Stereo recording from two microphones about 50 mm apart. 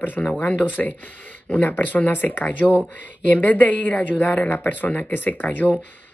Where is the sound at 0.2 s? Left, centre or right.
Left.